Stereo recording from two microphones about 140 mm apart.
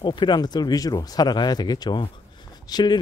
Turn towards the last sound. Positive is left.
turn(degrees=30)  # may be behind; listen again after turning